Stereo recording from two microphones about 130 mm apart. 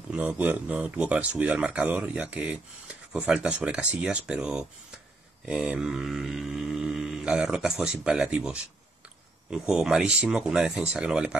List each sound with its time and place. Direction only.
0.1 s speech: 10° right (ahead or behind)
5.4 s mantra: 10° right (ahead or behind)